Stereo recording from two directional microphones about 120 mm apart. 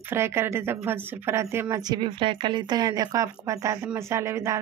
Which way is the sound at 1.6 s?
35° right (ahead or behind).